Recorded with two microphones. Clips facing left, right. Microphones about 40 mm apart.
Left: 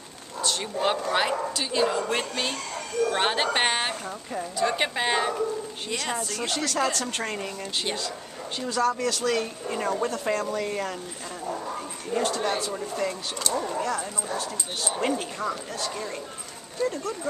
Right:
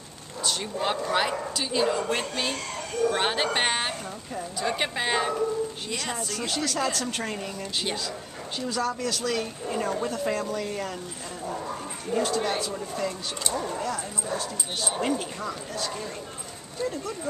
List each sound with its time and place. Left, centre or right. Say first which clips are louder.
0.4 s a woman's voice: left 2 dB; centre
12.1 s a woman's voice: even; centre